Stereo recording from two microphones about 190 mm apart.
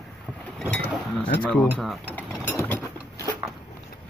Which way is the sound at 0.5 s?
5° left (ahead or behind).